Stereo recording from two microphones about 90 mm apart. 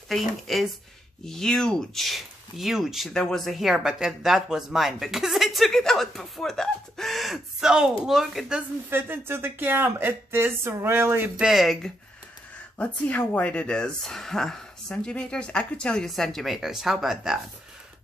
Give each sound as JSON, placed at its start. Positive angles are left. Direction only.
{"t": 0.1, "sound": "speech", "side_deg": 0}
{"t": 8.9, "sound": "speech", "side_deg": -25}
{"t": 11.3, "sound": "speech", "side_deg": -5}
{"t": 12.7, "sound": "speech", "side_deg": 15}